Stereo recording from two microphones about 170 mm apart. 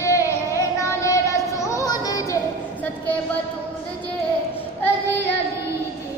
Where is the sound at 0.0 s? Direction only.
15° left (ahead or behind).